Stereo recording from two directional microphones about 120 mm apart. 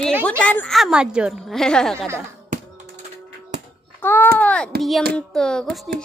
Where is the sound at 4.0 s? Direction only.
15° left (ahead or behind).